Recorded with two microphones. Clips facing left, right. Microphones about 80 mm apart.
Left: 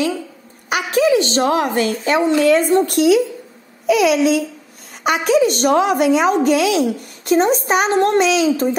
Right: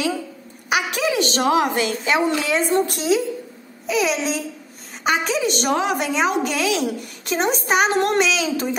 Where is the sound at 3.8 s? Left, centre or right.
Left.